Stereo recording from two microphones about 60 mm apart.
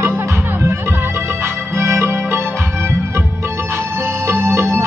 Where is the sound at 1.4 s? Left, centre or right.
Right.